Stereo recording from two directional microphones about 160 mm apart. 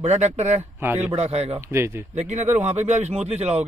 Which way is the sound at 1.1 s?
40° right (ahead or behind).